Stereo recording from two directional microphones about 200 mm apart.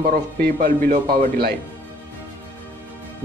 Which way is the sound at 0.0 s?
45° right (ahead or behind).